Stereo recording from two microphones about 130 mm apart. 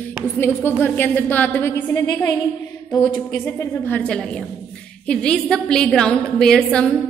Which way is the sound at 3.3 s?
20° left (ahead or behind).